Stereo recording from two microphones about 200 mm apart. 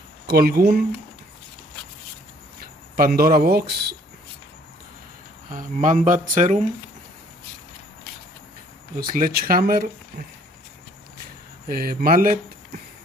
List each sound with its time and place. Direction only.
0.3 s speech: 50° right (ahead or behind)
3.0 s speech: 50° right (ahead or behind)
5.5 s speech: 40° right (ahead or behind)
9.1 s speech: 45° right (ahead or behind)
11.6 s speech: 45° right (ahead or behind)